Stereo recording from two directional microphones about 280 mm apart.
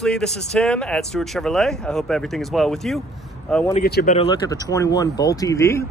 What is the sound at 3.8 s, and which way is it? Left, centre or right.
Speech, left.